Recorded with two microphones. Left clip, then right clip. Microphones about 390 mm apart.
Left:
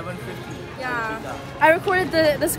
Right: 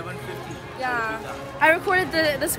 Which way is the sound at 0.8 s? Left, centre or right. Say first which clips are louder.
Right 1 dB; centre.